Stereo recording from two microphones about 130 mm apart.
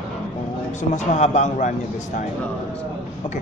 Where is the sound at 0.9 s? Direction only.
65° left (ahead or behind).